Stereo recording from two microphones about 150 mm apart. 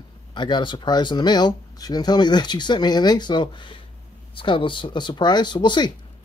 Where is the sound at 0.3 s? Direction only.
30° left (ahead or behind).